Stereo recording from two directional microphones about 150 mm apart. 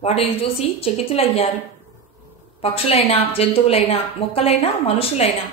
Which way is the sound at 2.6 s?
40° left (ahead or behind).